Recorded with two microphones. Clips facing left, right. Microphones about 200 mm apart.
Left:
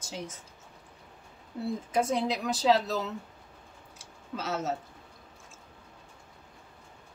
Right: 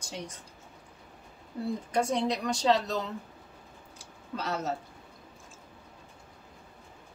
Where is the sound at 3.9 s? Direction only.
Centre (ahead or behind).